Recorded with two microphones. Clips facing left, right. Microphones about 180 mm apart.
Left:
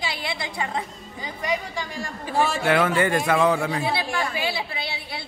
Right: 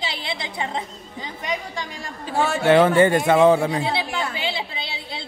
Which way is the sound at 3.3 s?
25° right (ahead or behind).